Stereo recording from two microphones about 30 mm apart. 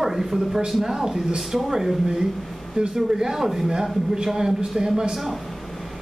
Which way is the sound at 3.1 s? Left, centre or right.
Centre.